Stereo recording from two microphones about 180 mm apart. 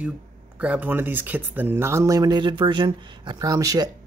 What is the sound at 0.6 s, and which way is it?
Speech, 10° right (ahead or behind).